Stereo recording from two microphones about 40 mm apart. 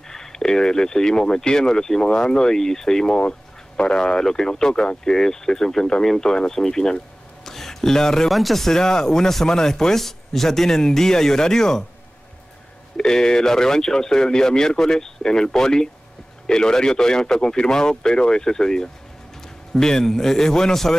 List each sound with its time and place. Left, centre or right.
0.1 s speech: centre
3.2 s speech: left
7.4 s a sound: centre
8.3 s speech: centre
12.9 s a man's voice: centre